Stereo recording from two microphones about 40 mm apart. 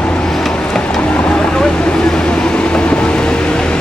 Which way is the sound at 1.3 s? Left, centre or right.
Centre.